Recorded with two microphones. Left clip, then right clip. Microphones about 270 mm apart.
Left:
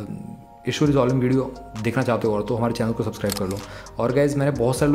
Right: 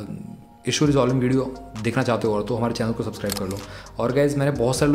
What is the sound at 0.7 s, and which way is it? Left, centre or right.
Speech, centre.